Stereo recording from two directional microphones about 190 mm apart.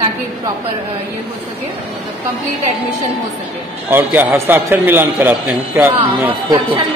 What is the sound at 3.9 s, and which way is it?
A man's voice, 10° right (ahead or behind).